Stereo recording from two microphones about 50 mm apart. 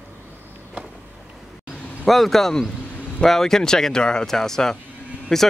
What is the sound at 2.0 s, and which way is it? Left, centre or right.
Speech, centre.